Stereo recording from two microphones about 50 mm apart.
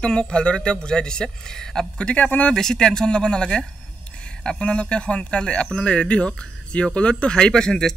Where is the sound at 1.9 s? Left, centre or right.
Left.